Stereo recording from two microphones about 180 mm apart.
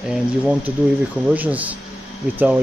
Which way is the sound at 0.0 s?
5° right (ahead or behind).